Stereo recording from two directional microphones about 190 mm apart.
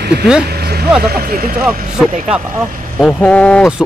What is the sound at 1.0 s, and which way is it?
Speech, 50° right (ahead or behind).